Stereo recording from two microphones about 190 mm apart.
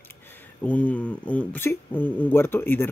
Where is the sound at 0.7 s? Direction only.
5° left (ahead or behind).